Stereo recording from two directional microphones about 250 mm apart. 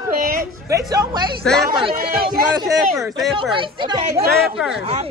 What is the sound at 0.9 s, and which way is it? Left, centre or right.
Speech, centre.